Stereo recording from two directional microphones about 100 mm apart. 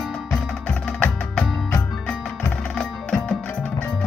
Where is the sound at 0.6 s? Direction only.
15° left (ahead or behind).